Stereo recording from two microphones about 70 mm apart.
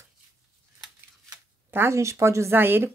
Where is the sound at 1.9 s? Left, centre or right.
Right.